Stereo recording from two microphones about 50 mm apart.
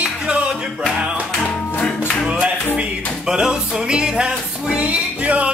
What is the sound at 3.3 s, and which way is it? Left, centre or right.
Music, centre.